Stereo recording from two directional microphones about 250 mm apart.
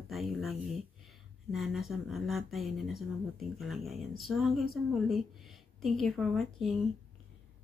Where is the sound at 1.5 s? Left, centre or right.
Centre.